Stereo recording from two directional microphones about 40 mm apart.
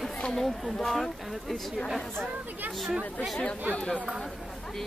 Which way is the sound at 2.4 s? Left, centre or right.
Right.